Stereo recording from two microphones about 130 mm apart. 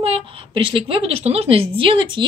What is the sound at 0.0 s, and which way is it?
A woman's voice, 45° right (ahead or behind).